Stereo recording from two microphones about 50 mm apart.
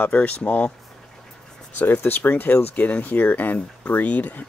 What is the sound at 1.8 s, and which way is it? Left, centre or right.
Speech, left.